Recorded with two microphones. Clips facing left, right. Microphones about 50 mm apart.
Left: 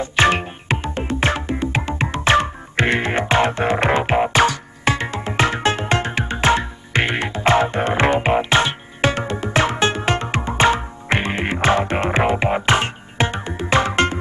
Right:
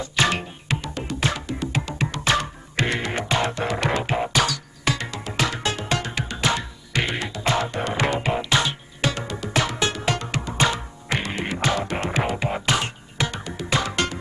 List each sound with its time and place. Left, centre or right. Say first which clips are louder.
0.0 s music: left 6 dB; left